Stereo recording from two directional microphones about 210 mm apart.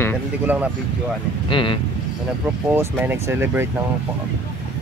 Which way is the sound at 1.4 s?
25° left (ahead or behind).